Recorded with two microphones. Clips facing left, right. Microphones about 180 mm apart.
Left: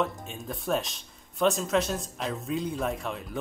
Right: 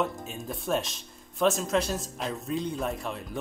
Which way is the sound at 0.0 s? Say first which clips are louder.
Even; centre (ahead or behind).